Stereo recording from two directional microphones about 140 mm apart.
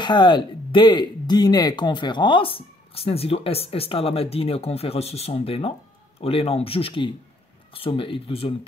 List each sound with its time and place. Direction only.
0.0 s speech: 35° left (ahead or behind)